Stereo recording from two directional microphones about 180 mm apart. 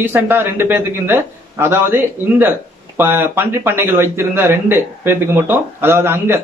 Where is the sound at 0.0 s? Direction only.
10° right (ahead or behind).